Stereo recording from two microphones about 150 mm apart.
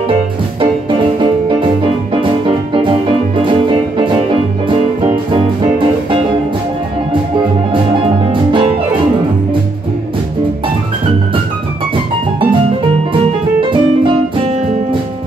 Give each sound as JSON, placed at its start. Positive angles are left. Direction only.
{"t": 0.6, "sound": "music", "side_deg": -35}
{"t": 8.3, "sound": "music", "side_deg": -35}
{"t": 13.1, "sound": "music", "side_deg": -35}